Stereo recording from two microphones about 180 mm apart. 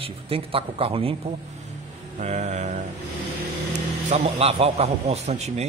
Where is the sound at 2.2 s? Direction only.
40° right (ahead or behind).